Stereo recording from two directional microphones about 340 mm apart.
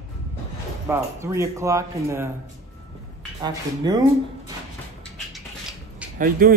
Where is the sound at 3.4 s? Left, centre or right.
Centre.